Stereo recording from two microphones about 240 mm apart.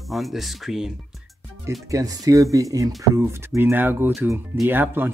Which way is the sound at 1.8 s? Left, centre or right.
Centre.